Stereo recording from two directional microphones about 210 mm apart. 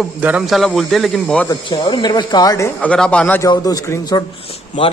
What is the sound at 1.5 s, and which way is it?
A man's voice, 20° left (ahead or behind).